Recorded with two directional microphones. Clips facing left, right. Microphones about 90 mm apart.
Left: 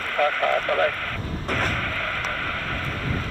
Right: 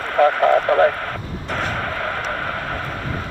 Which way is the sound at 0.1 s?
30° right (ahead or behind).